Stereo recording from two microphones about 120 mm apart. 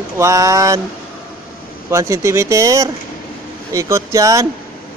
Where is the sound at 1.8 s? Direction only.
25° right (ahead or behind).